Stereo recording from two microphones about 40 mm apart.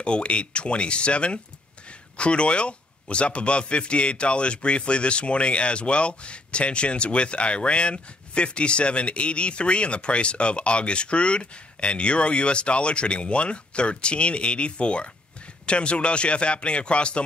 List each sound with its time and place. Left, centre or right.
0.0 s a man's voice: left